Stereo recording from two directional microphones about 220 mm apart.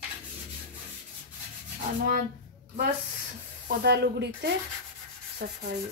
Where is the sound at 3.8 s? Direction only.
50° right (ahead or behind).